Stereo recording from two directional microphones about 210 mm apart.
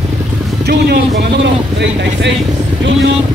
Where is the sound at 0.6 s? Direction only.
50° right (ahead or behind).